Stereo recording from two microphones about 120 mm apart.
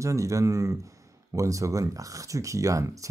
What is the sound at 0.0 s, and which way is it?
Speech, 25° right (ahead or behind).